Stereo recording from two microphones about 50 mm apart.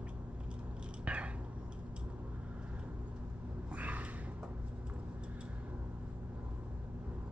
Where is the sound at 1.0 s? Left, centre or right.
Right.